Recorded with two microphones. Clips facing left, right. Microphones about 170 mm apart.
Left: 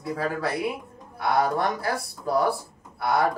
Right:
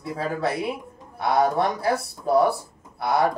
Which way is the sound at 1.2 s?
25° right (ahead or behind).